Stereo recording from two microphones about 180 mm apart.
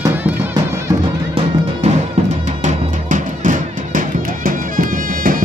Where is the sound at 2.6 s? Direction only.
45° right (ahead or behind).